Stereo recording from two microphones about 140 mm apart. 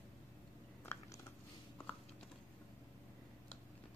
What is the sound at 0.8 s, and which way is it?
Chewing, 15° left (ahead or behind).